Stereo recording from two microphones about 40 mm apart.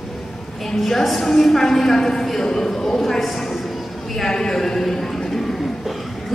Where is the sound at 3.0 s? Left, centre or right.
Centre.